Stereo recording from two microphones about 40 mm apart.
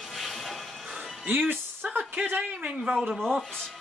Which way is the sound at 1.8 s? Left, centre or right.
Right.